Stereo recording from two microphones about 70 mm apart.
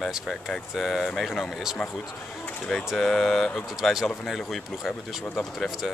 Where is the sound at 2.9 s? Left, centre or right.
Centre.